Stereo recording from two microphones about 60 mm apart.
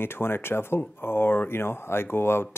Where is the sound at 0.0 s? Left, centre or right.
Left.